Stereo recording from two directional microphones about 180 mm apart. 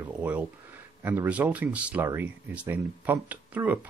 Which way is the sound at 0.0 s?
10° right (ahead or behind).